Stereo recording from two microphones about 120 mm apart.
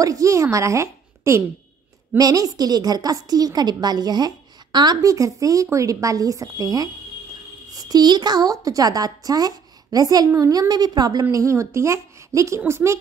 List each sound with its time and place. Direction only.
0.0 s a child's voice: 25° right (ahead or behind)